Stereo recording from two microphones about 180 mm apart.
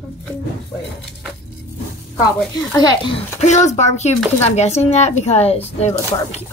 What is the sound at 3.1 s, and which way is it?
Speech, 40° left (ahead or behind).